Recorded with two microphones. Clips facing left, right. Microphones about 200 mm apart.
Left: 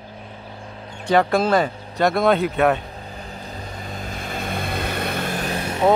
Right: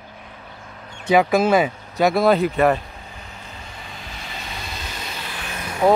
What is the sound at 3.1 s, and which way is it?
Vehicle, 35° left (ahead or behind).